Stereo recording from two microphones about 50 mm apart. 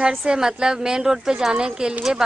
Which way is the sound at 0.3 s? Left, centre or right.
Centre.